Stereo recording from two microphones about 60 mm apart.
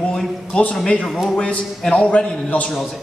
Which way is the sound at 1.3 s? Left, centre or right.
Centre.